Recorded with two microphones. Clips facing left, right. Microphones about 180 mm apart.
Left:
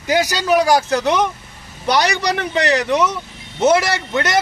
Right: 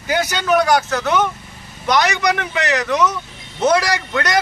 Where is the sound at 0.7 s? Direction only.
35° left (ahead or behind).